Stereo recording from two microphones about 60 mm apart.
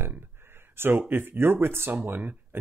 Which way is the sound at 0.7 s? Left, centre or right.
Right.